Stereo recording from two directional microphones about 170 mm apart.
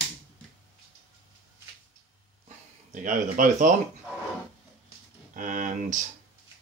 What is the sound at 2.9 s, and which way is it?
Speech, 50° right (ahead or behind).